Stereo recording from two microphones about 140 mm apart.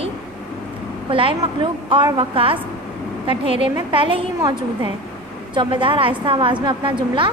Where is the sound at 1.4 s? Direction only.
35° right (ahead or behind).